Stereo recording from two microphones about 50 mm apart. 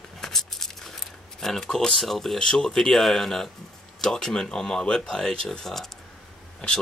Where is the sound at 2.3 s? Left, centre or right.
Centre.